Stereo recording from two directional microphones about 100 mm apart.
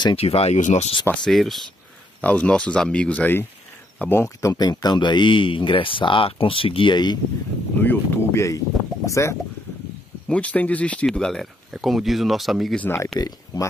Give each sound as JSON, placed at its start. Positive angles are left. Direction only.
{"t": 0.1, "sound": "speech", "side_deg": 80}
{"t": 1.2, "sound": "speech", "side_deg": 0}
{"t": 2.2, "sound": "speech", "side_deg": 10}
{"t": 4.6, "sound": "speech", "side_deg": 40}
{"t": 7.8, "sound": "speech", "side_deg": 20}
{"t": 10.2, "sound": "speech", "side_deg": 10}
{"t": 12.7, "sound": "speech", "side_deg": 15}